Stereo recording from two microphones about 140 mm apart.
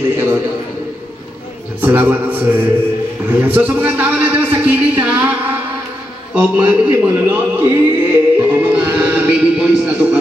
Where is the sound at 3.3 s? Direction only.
15° right (ahead or behind).